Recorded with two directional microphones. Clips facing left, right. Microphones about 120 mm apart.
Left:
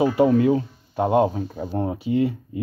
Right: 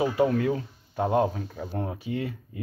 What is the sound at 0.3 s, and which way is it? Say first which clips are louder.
Speech: left 8 dB; 30° left (ahead or behind).